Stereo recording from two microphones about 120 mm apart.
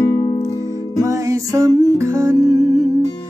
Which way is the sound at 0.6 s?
30° right (ahead or behind).